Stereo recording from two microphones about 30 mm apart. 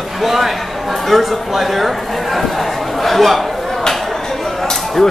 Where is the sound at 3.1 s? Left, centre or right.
Centre.